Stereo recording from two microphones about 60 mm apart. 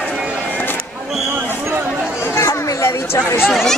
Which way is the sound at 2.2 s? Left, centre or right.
Left.